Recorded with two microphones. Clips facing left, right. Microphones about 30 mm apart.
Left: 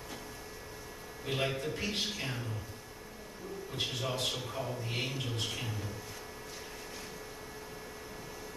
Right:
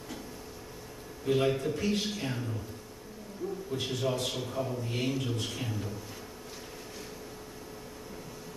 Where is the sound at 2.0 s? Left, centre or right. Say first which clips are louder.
Right 3 dB; centre.